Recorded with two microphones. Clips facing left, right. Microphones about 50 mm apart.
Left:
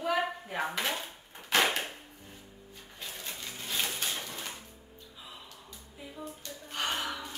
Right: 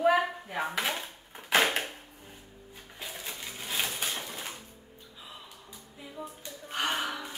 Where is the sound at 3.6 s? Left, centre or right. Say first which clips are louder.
Right 1 dB; centre.